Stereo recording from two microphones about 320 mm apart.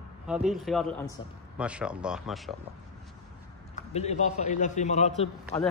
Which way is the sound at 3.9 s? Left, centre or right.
Left.